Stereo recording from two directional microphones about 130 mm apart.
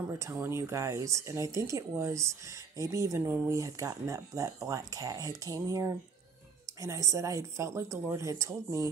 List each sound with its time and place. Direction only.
0.2 s speech: 20° right (ahead or behind)